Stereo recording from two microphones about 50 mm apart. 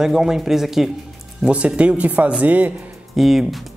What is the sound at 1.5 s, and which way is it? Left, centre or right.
A man's voice, right.